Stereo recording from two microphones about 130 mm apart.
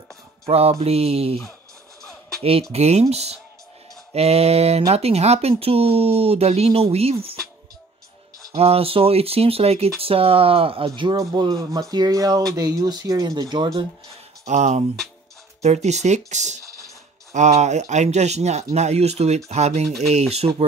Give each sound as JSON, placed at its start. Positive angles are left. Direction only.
{"t": 0.5, "sound": "speech", "side_deg": -50}
{"t": 2.7, "sound": "speech", "side_deg": -55}
{"t": 8.5, "sound": "speech", "side_deg": -50}
{"t": 11.3, "sound": "speech", "side_deg": -35}
{"t": 14.4, "sound": "speech", "side_deg": -60}